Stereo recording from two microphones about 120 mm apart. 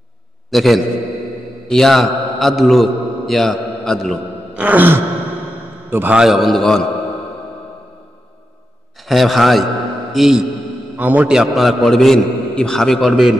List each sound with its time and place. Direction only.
0.5 s a man's voice: centre (ahead or behind)
4.6 s sigh: 15° right (ahead or behind)
5.9 s a man's voice: 15° right (ahead or behind)
6.1 s a man's voice: centre (ahead or behind)
9.0 s a man's voice: centre (ahead or behind)